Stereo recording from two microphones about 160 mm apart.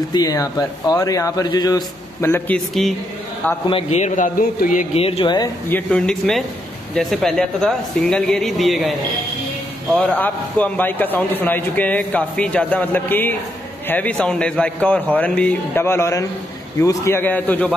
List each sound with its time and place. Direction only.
0.1 s speech: 25° left (ahead or behind)
2.2 s a man's voice: 10° left (ahead or behind)
3.9 s a man's voice: 50° left (ahead or behind)
4.9 s speech: 35° left (ahead or behind)
5.7 s a man's voice: 10° left (ahead or behind)
9.9 s a man's voice: 10° left (ahead or behind)